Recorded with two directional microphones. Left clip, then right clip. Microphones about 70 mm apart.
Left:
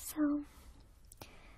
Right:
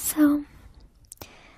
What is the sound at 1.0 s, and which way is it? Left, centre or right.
Whispering, right.